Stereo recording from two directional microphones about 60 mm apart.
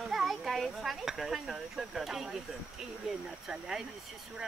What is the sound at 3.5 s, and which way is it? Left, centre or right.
Speech, centre.